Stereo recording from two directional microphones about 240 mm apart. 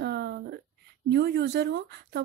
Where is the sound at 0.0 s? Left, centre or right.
Right.